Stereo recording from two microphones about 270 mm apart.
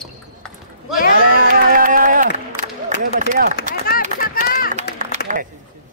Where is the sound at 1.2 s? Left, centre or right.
Right.